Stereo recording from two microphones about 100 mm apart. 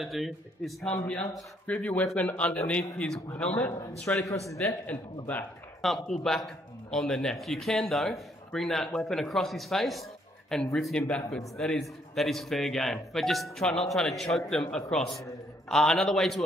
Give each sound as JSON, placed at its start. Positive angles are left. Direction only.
{"t": 0.0, "sound": "a man's voice", "side_deg": 0}
{"t": 1.0, "sound": "a man's voice", "side_deg": 15}
{"t": 5.8, "sound": "a man's voice", "side_deg": 5}